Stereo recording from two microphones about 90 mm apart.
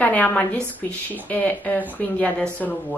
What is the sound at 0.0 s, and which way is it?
A woman's voice, 20° left (ahead or behind).